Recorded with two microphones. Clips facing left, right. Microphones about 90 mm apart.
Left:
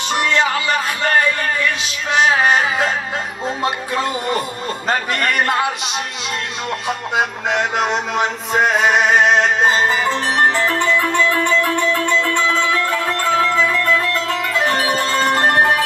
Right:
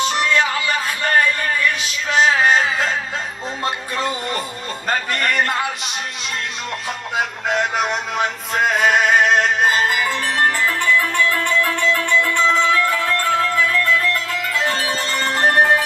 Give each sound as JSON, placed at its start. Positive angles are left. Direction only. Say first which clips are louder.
{"t": 0.1, "sound": "music", "louder": "left 1 dB", "side_deg": 20}
{"t": 3.4, "sound": "music", "louder": "left 5 dB", "side_deg": 20}
{"t": 4.8, "sound": "a man's voice", "louder": "left 1 dB", "side_deg": 20}
{"t": 6.9, "sound": "music", "louder": "left 4 dB", "side_deg": 20}